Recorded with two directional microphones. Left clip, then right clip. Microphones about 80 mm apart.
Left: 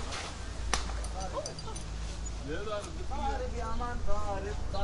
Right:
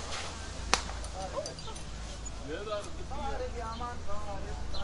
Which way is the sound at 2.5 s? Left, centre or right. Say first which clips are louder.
Even; centre.